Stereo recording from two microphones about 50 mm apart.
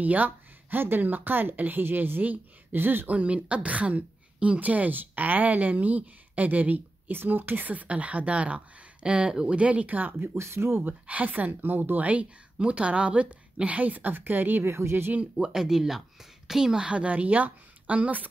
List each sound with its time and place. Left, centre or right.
0.0 s speech: right
3.1 s a woman's voice: right
10.3 s speech: right
11.1 s a woman's voice: right
14.7 s speech: right
15.1 s a woman's voice: right
15.5 s a woman's voice: centre; by 18.2 s right